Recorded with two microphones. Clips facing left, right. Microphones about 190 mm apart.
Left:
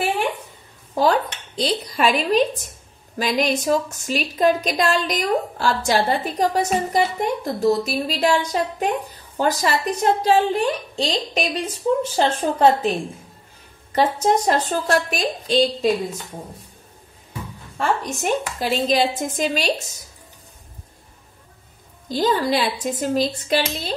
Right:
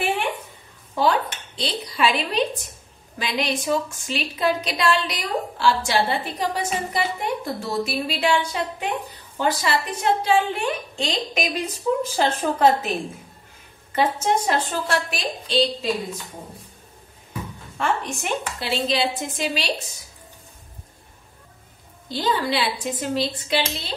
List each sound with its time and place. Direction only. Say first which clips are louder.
0.9 s a woman's voice: left 2 dB; 40° left (ahead or behind)
13.9 s a woman's voice: left 3 dB; 35° left (ahead or behind)
17.7 s a woman's voice: left 2 dB; 40° left (ahead or behind)
22.1 s a woman's voice: left 4 dB; 45° left (ahead or behind)